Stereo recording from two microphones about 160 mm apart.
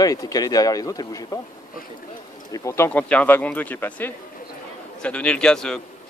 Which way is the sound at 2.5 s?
15° left (ahead or behind).